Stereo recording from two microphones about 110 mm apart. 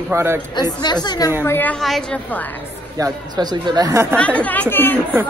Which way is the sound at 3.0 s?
40° right (ahead or behind).